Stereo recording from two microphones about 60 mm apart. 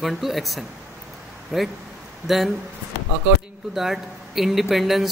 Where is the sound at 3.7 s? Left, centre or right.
Centre.